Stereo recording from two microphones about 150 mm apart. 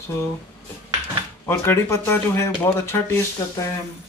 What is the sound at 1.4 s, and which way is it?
Speech, 15° left (ahead or behind).